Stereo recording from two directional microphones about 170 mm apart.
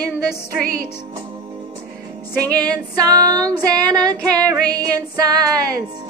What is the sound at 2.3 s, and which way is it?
Female singing, 20° right (ahead or behind).